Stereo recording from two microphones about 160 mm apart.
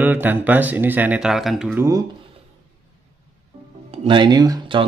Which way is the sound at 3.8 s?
30° right (ahead or behind).